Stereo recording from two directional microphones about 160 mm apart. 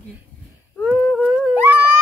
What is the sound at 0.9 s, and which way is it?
Dog, 5° left (ahead or behind).